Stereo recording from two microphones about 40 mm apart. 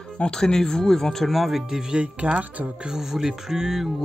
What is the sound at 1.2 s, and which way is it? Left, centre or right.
Speech, centre.